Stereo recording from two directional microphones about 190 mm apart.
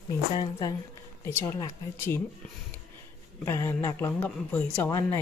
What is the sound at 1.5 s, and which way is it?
Speech, 15° left (ahead or behind).